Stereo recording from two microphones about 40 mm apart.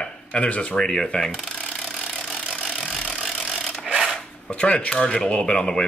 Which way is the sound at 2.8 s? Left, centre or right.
Left.